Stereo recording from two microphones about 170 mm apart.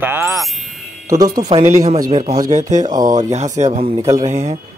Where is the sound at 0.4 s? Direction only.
Centre (ahead or behind).